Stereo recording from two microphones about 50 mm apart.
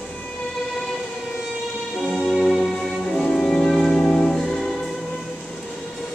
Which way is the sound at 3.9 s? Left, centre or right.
Centre.